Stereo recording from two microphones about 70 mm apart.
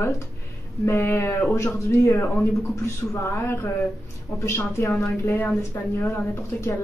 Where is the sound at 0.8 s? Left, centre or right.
Left.